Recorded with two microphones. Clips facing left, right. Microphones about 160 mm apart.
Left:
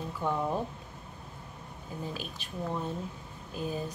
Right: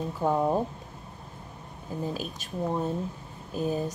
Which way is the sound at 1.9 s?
40° right (ahead or behind).